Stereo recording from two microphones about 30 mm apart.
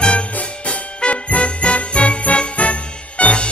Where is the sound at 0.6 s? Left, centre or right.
Left.